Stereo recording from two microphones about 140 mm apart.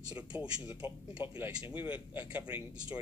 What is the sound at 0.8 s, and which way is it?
Speech, 35° left (ahead or behind).